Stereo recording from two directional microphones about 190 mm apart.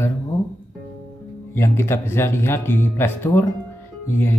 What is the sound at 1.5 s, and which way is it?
Speech, 15° left (ahead or behind).